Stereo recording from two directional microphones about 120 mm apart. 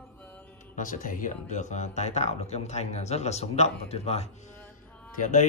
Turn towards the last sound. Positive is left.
turn(degrees=80)